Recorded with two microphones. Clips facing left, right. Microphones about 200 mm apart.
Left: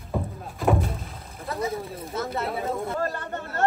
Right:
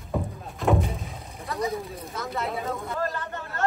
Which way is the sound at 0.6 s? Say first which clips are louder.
Even; centre (ahead or behind).